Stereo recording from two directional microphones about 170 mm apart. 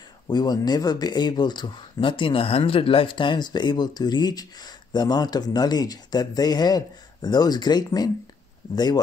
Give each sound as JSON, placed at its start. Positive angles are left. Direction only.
{"t": 0.3, "sound": "speech", "side_deg": 25}